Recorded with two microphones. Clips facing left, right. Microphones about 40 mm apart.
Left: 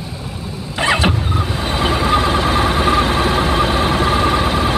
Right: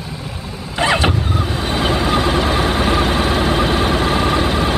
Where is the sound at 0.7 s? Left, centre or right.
Centre.